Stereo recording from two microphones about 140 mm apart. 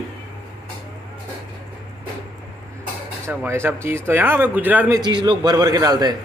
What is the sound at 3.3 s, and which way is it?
Speech, 15° right (ahead or behind).